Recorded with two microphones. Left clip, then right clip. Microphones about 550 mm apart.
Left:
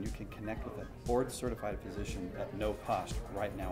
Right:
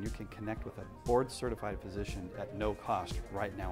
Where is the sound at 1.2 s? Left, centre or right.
Right.